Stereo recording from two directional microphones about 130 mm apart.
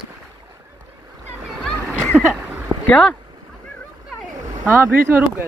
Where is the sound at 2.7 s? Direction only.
15° right (ahead or behind).